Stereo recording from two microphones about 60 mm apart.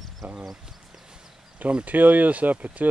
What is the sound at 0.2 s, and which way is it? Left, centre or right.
Speech, right.